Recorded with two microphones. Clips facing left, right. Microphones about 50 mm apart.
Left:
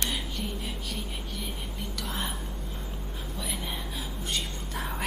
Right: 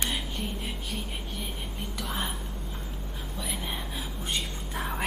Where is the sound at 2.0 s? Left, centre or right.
Centre.